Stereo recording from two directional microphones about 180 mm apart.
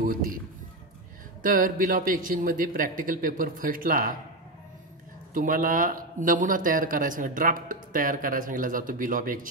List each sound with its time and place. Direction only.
0.0 s speech: 50° right (ahead or behind)
1.4 s speech: 50° right (ahead or behind)
5.3 s speech: 50° right (ahead or behind)